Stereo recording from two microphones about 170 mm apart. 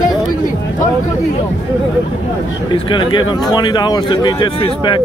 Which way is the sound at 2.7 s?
30° left (ahead or behind).